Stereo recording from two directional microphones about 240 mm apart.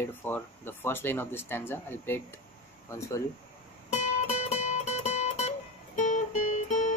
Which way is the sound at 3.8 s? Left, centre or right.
Left.